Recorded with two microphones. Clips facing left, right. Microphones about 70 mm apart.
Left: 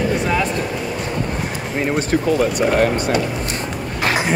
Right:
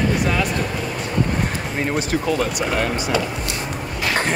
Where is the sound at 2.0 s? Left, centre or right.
Left.